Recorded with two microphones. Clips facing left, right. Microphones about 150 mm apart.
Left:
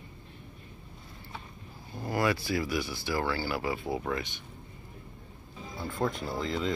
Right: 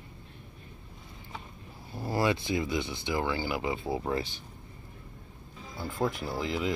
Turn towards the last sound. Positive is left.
turn(degrees=-10)  # may be behind; listen again after turning